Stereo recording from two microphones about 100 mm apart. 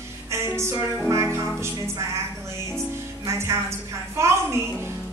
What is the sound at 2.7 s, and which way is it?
A woman's voice, 30° right (ahead or behind).